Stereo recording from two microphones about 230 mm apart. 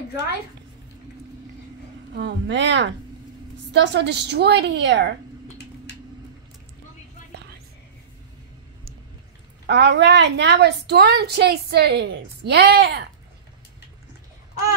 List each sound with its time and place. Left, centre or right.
2.1 s a woman's voice: right
9.7 s a woman's voice: right